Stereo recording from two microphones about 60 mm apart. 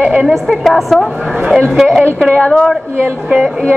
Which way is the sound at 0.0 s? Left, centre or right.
Right.